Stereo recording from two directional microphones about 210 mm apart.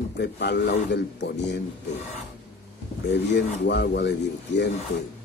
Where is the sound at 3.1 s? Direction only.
55° left (ahead or behind).